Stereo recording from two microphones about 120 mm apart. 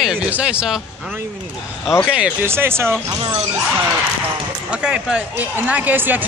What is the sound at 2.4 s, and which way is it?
Speech, 20° right (ahead or behind).